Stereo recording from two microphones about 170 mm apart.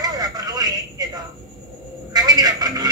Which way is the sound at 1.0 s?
20° right (ahead or behind).